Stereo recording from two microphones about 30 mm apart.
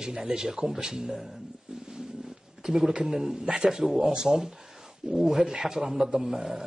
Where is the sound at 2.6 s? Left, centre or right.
Centre.